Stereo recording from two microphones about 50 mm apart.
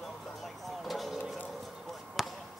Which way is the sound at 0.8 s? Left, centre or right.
Centre.